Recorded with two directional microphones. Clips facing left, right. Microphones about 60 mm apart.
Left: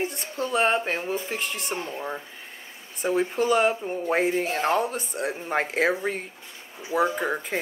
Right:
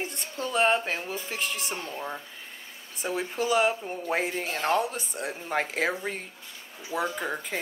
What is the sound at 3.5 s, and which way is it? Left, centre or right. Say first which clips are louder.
Speech: left 1 dB; centre.